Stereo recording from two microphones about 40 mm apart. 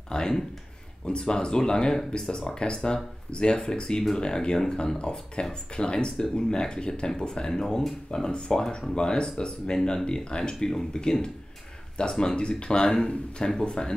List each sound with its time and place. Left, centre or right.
0.1 s speech: left